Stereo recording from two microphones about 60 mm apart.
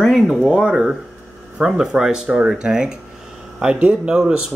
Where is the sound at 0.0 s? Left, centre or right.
Centre.